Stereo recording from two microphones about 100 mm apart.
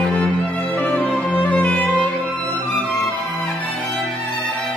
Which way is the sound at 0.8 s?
15° left (ahead or behind).